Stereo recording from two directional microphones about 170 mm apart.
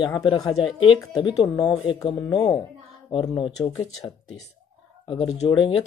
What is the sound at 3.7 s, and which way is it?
Speech, 20° left (ahead or behind).